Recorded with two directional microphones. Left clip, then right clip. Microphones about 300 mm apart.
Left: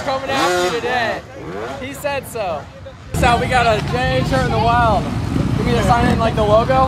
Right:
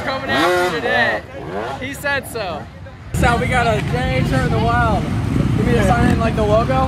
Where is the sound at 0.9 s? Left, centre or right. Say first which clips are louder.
Right 2 dB; left.